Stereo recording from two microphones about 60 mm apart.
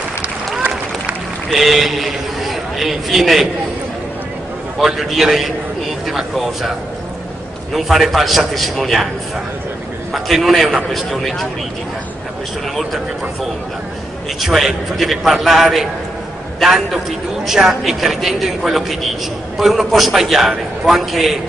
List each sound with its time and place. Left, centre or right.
1.5 s a man's voice: centre
4.7 s a man's voice: centre
7.7 s a man's voice: centre
10.1 s a man's voice: centre
14.4 s a man's voice: centre